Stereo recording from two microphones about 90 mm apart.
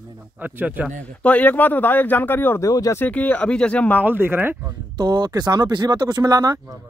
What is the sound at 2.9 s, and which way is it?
Speech, 20° left (ahead or behind).